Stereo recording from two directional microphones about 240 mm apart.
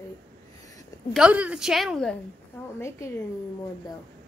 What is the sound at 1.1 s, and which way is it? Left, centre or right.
A woman's voice, centre.